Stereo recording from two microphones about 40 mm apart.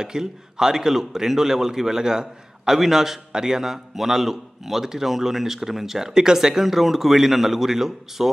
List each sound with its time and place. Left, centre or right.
0.0 s a man's voice: centre